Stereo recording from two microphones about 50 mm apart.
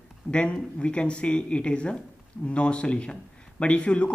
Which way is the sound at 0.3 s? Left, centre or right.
Centre.